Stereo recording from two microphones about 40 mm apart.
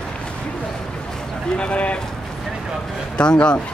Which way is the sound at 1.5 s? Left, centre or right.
Left.